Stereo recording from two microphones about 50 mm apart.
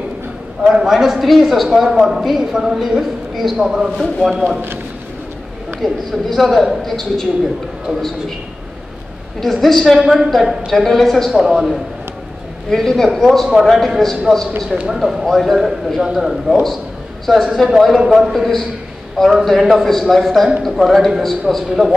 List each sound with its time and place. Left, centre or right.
0.7 s a man's voice: centre
4.0 s a man's voice: centre
4.5 s a man's voice: right
5.8 s a man's voice: centre
9.4 s a man's voice: centre
10.7 s a man's voice: centre
11.3 s a woman's voice: centre
12.6 s a man's voice: centre
17.3 s a man's voice: centre